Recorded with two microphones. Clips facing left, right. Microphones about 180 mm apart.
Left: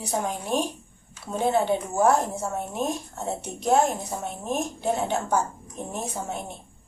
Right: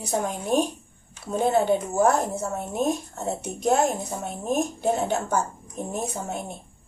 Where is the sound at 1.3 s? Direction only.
45° right (ahead or behind).